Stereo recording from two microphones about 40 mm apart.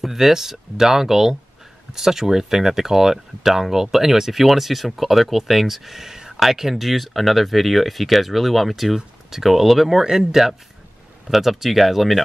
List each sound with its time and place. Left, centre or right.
0.0 s speech: centre